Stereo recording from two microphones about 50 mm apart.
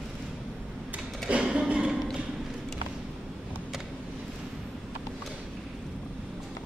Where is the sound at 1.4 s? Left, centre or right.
Right.